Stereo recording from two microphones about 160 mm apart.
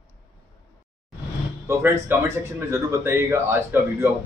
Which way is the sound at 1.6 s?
15° right (ahead or behind).